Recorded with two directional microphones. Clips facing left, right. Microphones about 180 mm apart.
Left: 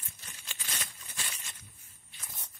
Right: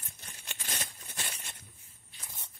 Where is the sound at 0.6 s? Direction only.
55° right (ahead or behind).